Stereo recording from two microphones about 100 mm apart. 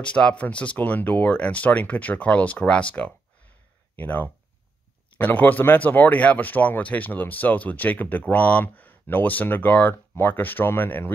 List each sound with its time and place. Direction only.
0.0 s speech: 10° left (ahead or behind)